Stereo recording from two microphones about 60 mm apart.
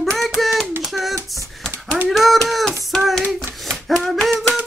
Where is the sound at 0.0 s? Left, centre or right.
Centre.